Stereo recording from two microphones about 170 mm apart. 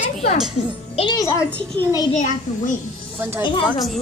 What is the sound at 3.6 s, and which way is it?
Speech, centre (ahead or behind).